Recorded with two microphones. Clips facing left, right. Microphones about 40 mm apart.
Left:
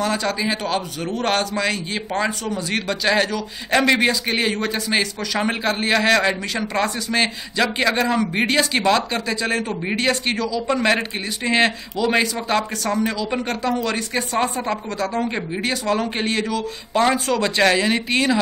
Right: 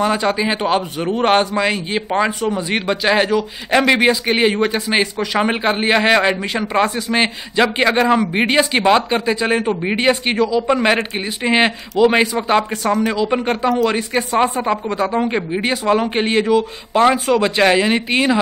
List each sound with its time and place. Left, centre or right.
0.0 s a man's voice: right